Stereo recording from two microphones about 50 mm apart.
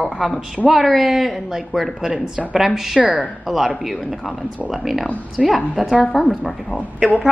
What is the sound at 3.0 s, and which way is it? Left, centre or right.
Speech, right.